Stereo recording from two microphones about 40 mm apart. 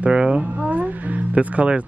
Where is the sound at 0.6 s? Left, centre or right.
Right.